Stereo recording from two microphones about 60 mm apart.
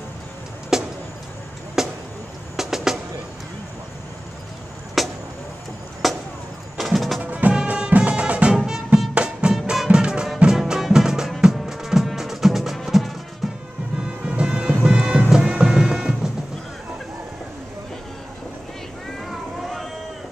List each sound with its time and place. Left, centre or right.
0.7 s vehicle: centre
1.8 s a sound: centre
2.5 s music: centre
5.0 s vehicle: centre
6.0 s a sound: centre
6.8 s music: centre
7.2 s music: right; by 13.6 s centre
14.0 s music: centre
19.6 s cat: centre